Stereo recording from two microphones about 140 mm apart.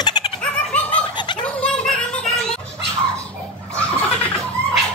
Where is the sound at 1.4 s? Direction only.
5° left (ahead or behind).